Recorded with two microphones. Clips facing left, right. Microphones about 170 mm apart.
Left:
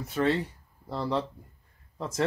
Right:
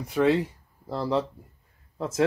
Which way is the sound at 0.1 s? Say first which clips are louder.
Right 5 dB; 5° right (ahead or behind).